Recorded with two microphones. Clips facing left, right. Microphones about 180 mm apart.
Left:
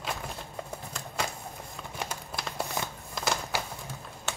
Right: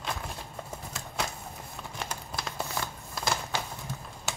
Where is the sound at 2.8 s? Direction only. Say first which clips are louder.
Even; 20° left (ahead or behind).